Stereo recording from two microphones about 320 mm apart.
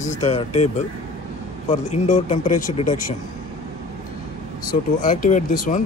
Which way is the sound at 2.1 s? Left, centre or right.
Left.